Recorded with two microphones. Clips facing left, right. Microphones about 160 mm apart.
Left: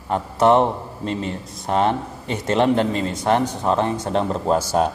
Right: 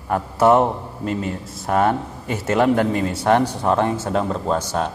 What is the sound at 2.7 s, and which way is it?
Speech, 25° left (ahead or behind).